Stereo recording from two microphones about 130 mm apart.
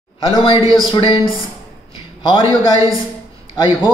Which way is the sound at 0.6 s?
30° right (ahead or behind).